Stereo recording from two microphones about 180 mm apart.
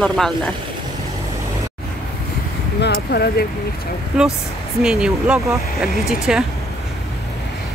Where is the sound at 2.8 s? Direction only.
65° left (ahead or behind).